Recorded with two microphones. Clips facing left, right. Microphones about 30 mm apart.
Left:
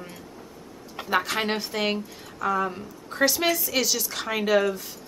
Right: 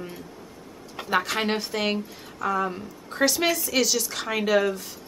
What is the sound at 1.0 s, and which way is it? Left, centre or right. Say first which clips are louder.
Speech: even; centre.